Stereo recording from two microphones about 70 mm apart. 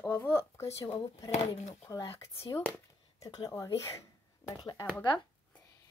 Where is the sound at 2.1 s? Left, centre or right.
Left.